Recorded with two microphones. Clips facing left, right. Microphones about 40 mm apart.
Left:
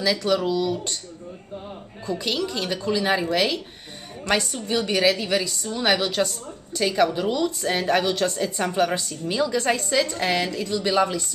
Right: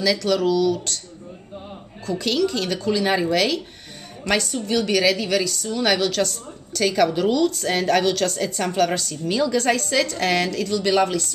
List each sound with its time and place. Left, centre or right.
0.0 s a woman's voice: centre
2.0 s a woman's voice: centre
3.3 s a woman's voice: centre